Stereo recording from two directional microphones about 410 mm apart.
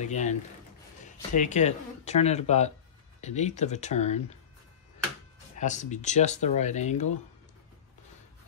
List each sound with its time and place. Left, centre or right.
0.0 s speech: centre
5.6 s speech: centre